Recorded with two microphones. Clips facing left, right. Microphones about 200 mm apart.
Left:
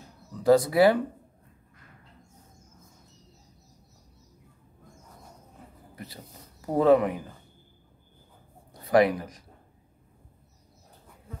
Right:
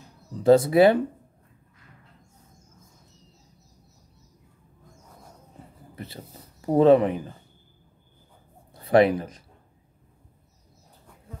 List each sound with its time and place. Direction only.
0.4 s speech: 25° right (ahead or behind)
5.9 s speech: 25° right (ahead or behind)
8.9 s speech: 25° right (ahead or behind)